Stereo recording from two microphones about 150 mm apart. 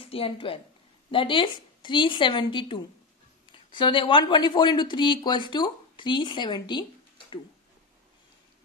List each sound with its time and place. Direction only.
0.0 s a woman's voice: 40° left (ahead or behind)